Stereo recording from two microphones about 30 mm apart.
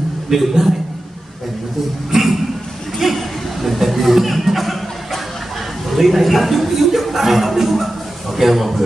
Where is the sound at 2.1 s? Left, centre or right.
Centre.